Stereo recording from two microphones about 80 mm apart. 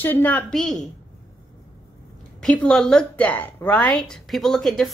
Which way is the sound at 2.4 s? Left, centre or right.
Centre.